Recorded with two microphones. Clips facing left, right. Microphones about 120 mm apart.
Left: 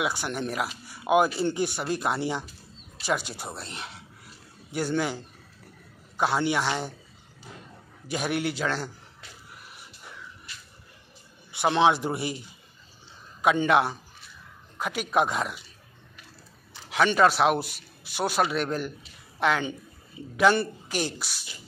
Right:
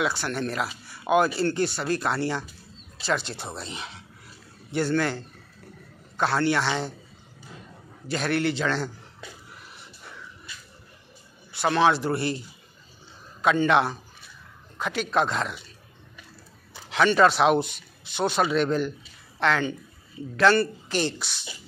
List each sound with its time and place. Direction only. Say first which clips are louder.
0.0 s speech: right 2 dB; 15° left (ahead or behind)
8.1 s speech: right 3 dB; 10° left (ahead or behind)
11.5 s speech: even; 20° left (ahead or behind)
13.4 s speech: right 1 dB; 10° left (ahead or behind)
16.9 s speech: right 2 dB; 5° left (ahead or behind)